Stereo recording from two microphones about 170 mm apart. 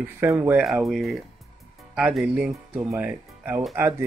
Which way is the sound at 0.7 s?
Centre (ahead or behind).